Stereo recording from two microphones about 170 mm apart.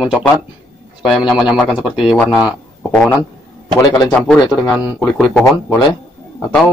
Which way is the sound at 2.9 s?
10° left (ahead or behind).